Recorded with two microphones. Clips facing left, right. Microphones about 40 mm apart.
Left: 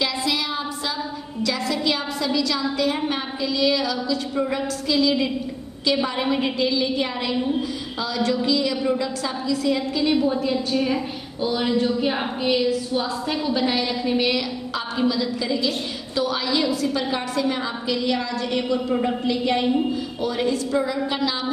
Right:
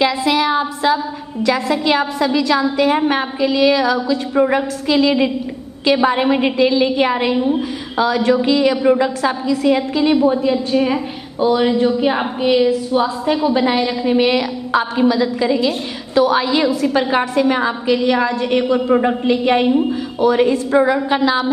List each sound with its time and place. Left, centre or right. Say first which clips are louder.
0.0 s a woman's voice: right 9 dB; right
10.2 s a woman's voice: right 7 dB; right
14.3 s a woman's voice: right 9 dB; right